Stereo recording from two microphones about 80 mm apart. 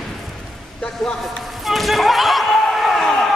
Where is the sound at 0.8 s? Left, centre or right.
Centre.